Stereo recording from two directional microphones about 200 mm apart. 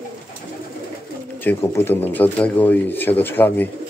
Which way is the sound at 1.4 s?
10° left (ahead or behind).